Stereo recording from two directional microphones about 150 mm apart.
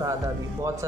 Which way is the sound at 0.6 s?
20° right (ahead or behind).